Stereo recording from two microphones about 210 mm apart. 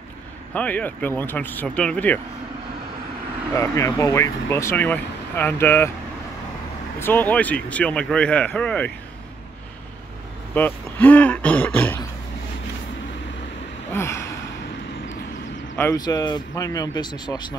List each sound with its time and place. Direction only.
0.6 s speech: 5° left (ahead or behind)
3.5 s speech: 15° left (ahead or behind)
7.0 s speech: 10° left (ahead or behind)
10.5 s speech: 10° left (ahead or behind)
13.9 s gasp: 15° left (ahead or behind)
15.8 s speech: 15° left (ahead or behind)